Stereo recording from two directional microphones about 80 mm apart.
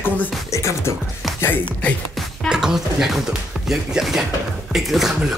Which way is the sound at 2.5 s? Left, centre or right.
Centre.